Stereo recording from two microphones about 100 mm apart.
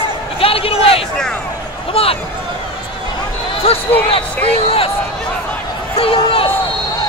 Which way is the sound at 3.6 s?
70° left (ahead or behind).